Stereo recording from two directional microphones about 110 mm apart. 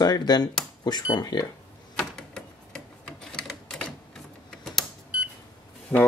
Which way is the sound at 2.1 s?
5° left (ahead or behind).